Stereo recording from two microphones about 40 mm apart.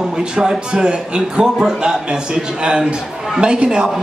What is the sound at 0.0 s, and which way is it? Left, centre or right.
A man's voice, centre.